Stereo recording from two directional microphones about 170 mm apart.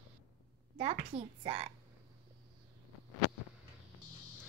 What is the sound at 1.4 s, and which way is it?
Speech, 35° right (ahead or behind).